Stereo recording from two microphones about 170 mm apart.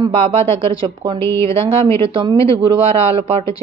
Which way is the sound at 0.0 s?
35° right (ahead or behind).